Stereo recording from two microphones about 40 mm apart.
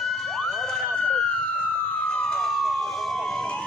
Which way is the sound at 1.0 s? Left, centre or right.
Left.